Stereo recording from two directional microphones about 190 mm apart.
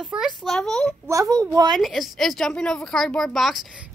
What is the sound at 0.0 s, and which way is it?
Speech, centre (ahead or behind).